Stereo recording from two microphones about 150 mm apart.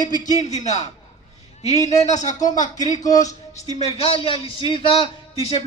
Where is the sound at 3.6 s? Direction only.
45° left (ahead or behind).